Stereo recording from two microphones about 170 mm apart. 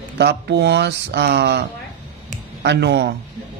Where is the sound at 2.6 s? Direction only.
85° right.